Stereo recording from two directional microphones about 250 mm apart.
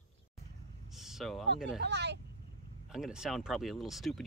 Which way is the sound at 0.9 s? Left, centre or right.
Centre.